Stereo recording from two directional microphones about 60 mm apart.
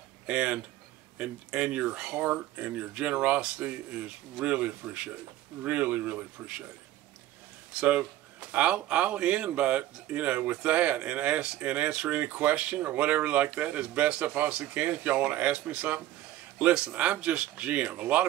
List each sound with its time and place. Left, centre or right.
0.3 s speech: right
8.0 s speech: right